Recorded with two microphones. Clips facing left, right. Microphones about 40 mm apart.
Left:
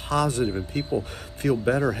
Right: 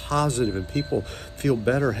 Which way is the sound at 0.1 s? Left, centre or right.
Right.